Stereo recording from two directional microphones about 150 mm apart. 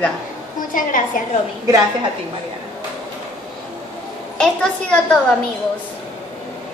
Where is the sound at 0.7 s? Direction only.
65° left (ahead or behind).